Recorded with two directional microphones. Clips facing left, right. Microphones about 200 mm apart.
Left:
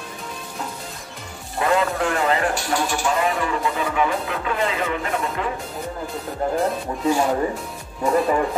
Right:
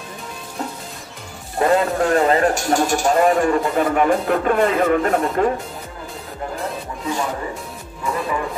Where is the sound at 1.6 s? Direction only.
40° right (ahead or behind).